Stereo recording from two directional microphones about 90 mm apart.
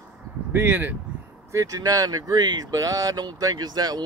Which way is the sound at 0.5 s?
20° right (ahead or behind).